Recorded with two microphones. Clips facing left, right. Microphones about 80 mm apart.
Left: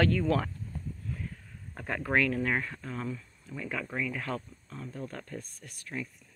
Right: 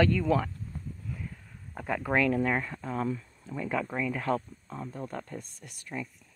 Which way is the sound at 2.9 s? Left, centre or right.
Right.